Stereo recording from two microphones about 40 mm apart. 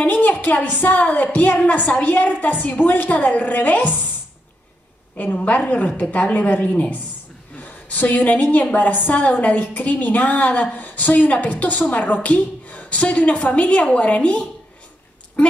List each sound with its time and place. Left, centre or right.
0.0 s a woman's voice: left
5.1 s a woman's voice: left